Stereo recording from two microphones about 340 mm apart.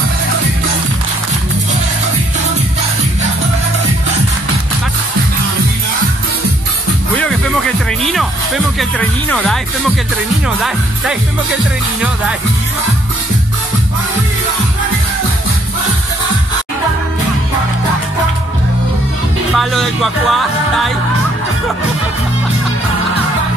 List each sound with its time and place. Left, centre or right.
8.0 s speech: centre
19.5 s speech: centre